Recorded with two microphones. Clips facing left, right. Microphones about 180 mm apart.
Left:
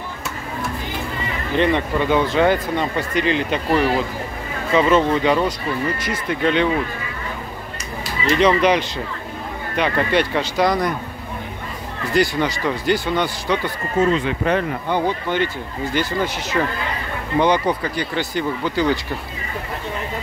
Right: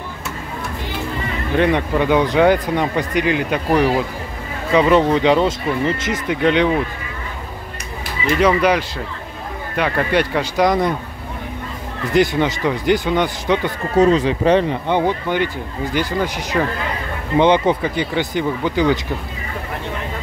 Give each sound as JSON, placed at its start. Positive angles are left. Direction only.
{"t": 1.6, "sound": "speech", "side_deg": -10}
{"t": 8.4, "sound": "speech", "side_deg": -10}
{"t": 12.1, "sound": "speech", "side_deg": -20}
{"t": 13.9, "sound": "speech", "side_deg": -40}
{"t": 17.4, "sound": "speech", "side_deg": -20}